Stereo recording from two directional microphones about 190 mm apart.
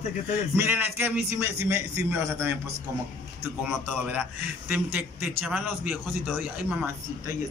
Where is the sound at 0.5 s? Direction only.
10° right (ahead or behind).